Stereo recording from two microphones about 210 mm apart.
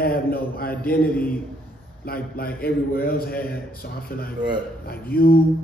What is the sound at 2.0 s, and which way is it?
A man's voice, 45° left (ahead or behind).